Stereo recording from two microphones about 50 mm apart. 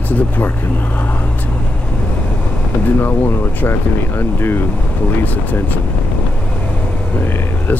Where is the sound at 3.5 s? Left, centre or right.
Left.